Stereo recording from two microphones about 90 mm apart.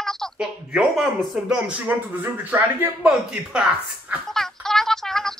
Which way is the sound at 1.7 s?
20° right (ahead or behind).